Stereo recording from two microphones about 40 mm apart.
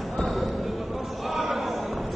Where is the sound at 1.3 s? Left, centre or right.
Centre.